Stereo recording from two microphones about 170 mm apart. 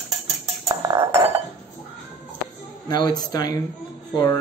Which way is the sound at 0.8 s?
20° right (ahead or behind).